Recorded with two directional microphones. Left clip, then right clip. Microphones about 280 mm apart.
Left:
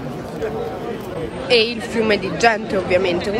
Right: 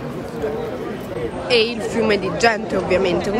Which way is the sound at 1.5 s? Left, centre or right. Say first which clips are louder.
Left 1 dB; centre.